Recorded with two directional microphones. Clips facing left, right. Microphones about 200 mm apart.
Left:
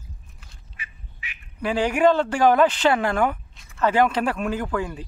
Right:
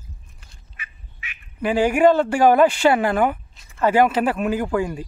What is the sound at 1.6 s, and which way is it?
Speech, 5° right (ahead or behind).